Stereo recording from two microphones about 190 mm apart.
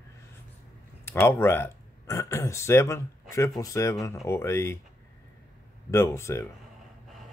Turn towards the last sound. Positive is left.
turn(degrees=15)  # may be behind; listen again after turning